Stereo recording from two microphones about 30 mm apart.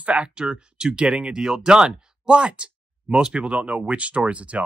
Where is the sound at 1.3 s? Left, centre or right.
Right.